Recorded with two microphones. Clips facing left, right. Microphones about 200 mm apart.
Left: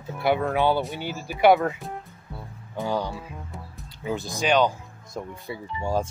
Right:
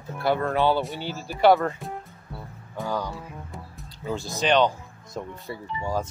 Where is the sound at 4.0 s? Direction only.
15° left (ahead or behind).